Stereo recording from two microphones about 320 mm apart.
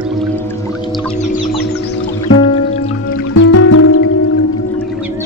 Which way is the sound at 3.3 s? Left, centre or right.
Left.